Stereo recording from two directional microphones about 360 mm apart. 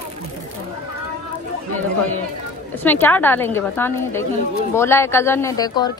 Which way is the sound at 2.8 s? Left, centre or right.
Centre.